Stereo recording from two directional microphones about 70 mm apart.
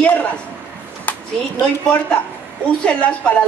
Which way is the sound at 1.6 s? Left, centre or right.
Centre.